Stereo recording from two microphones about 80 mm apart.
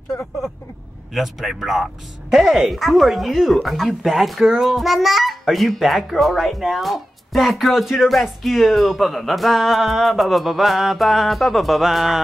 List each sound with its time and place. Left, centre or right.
1.1 s speech: centre